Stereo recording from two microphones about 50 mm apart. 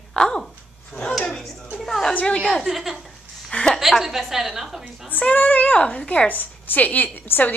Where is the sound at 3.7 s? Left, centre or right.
Centre.